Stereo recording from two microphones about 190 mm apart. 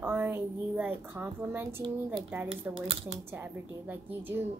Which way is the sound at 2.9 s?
30° right (ahead or behind).